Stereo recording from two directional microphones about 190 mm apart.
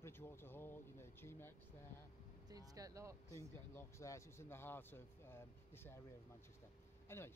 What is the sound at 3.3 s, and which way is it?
Speech, 15° left (ahead or behind).